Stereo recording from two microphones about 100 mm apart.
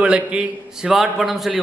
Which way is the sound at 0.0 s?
10° right (ahead or behind).